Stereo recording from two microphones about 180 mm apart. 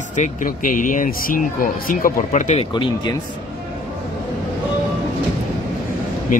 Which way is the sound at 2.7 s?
25° left (ahead or behind).